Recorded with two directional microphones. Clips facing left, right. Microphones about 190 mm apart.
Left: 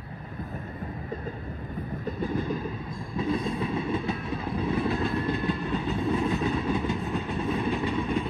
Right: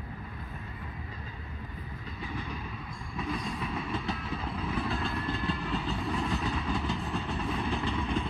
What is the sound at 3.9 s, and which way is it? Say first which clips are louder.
Train: left 5 dB; 55° left (ahead or behind).